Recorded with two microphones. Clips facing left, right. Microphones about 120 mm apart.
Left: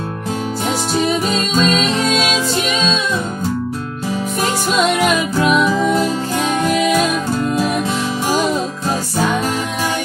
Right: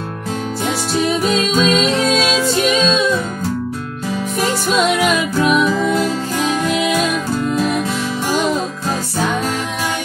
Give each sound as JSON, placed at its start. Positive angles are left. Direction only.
{"t": 1.6, "sound": "music", "side_deg": 0}
{"t": 5.0, "sound": "music", "side_deg": 0}